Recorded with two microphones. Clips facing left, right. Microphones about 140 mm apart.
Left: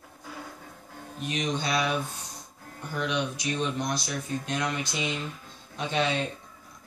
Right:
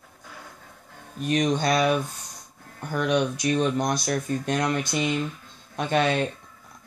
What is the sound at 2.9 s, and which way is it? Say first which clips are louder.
Speech: right 6 dB; 50° right (ahead or behind).